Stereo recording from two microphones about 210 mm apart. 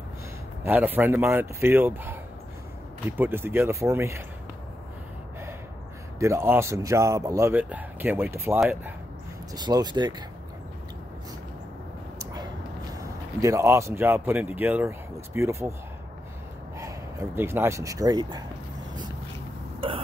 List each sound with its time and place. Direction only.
0.7 s speech: 10° right (ahead or behind)
6.1 s speech: 15° right (ahead or behind)
12.9 s speech: 15° right (ahead or behind)
16.7 s speech: 15° right (ahead or behind)